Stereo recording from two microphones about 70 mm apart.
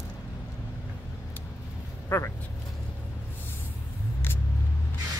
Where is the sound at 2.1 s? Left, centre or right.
Left.